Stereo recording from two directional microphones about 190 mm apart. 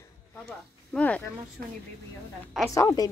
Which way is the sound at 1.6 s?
55° right (ahead or behind).